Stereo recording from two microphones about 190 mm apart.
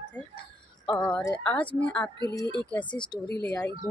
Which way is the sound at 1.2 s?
5° left (ahead or behind).